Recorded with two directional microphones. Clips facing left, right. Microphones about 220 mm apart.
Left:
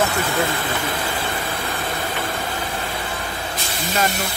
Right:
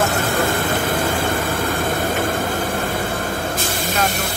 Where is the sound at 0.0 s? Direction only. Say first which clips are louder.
Right 2 dB; 45° right (ahead or behind).